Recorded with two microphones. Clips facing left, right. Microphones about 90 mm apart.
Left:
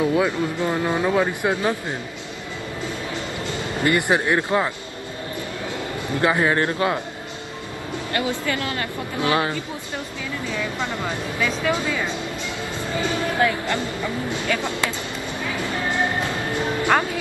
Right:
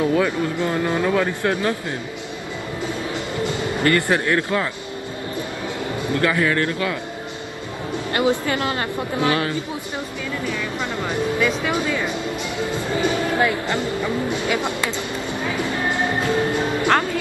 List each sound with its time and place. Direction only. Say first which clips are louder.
0.0 s speech: right 1 dB; 15° left (ahead or behind)
3.8 s speech: even; 20° left (ahead or behind)
6.1 s speech: left 1 dB; 20° left (ahead or behind)
8.2 s speech: right 5 dB; 25° right (ahead or behind)
11.4 s speech: right 2 dB; 10° right (ahead or behind)
15.5 s music: right 1 dB; 20° right (ahead or behind)